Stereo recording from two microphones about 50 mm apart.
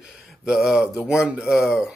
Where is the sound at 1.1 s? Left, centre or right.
Centre.